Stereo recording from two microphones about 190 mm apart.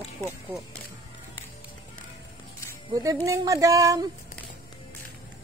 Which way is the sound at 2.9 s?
20° right (ahead or behind).